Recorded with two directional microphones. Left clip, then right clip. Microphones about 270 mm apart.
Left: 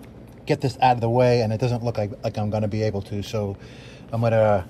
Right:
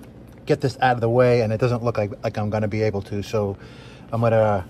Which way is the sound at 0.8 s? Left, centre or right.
Right.